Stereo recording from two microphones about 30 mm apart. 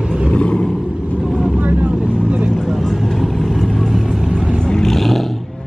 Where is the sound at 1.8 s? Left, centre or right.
Right.